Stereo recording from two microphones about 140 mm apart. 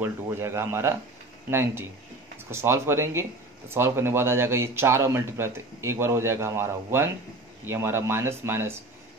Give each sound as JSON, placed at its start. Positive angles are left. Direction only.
{"t": 0.0, "sound": "speech", "side_deg": -20}